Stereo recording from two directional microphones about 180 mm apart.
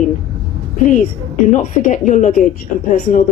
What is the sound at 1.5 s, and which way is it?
A woman's voice, 45° left (ahead or behind).